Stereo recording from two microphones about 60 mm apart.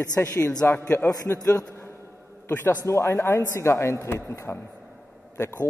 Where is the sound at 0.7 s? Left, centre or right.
Left.